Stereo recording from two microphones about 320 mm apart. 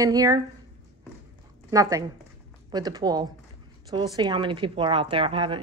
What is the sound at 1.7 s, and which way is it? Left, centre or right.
Speech, centre.